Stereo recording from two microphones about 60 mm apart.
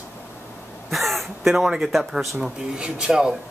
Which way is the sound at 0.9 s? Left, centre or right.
Centre.